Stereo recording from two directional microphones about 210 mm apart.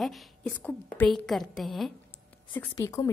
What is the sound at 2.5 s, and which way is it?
Speech, 10° left (ahead or behind).